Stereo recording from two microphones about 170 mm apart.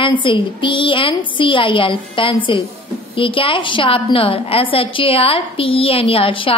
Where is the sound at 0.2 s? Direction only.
30° left (ahead or behind).